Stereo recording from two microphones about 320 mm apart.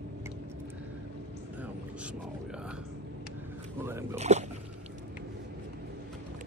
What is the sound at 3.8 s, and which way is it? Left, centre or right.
Speech, centre.